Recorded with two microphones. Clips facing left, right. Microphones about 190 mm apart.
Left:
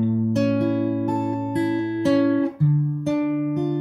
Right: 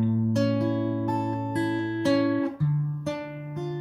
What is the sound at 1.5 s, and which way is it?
Guitar, 20° left (ahead or behind).